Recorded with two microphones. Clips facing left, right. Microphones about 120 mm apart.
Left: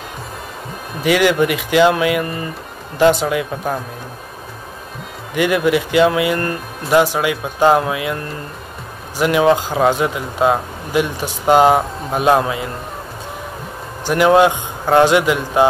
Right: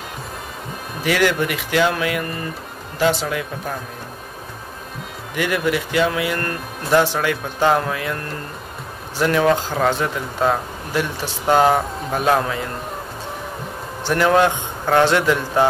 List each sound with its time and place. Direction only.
1.0 s speech: 15° left (ahead or behind)
5.3 s speech: 20° left (ahead or behind)
9.2 s speech: 15° left (ahead or behind)
14.0 s speech: 15° left (ahead or behind)